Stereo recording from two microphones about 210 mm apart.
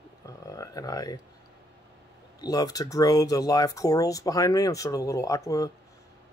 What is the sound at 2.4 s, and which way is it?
Speech, 15° left (ahead or behind).